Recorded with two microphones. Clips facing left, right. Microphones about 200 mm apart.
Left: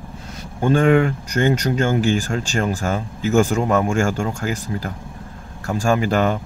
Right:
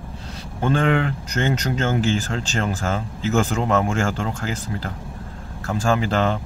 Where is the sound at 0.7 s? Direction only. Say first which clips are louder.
Left 5 dB; 45° left (ahead or behind).